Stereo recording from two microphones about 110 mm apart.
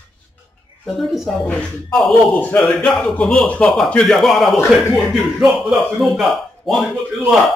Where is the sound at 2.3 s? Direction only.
15° left (ahead or behind).